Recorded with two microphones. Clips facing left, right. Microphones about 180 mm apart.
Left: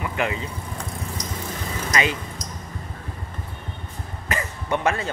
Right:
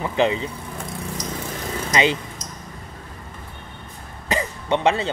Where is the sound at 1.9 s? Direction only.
25° right (ahead or behind).